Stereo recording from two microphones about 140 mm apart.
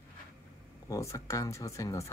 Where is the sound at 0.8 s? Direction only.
25° left (ahead or behind).